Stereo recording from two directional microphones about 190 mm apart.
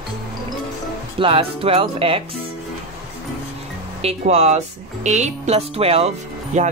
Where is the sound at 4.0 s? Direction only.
30° right (ahead or behind).